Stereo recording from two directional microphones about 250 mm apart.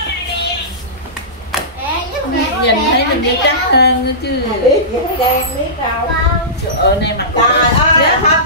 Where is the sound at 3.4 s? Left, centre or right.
Left.